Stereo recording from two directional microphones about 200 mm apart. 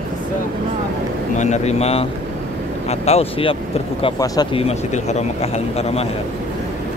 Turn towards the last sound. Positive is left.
turn(degrees=30)  # may be behind; listen again after turning